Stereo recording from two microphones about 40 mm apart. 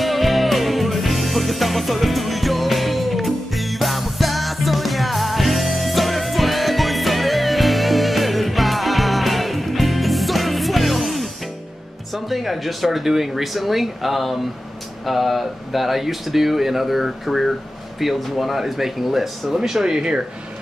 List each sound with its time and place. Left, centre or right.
0.0 s music: centre
12.1 s speech: centre